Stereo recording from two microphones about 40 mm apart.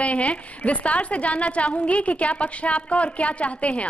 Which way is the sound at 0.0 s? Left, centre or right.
Left.